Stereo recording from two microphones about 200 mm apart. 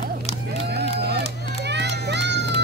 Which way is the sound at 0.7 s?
55° right (ahead or behind).